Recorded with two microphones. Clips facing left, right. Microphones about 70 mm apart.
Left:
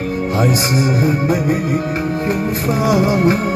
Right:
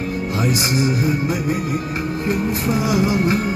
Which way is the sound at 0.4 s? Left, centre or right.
Left.